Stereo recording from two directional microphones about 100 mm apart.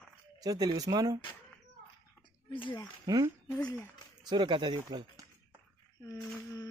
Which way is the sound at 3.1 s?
35° right (ahead or behind).